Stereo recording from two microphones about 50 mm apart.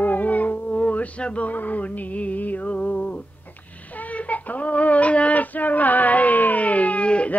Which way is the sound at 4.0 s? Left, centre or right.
Left.